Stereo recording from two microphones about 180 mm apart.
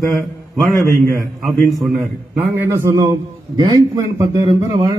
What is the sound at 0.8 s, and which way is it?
Speech, 20° right (ahead or behind).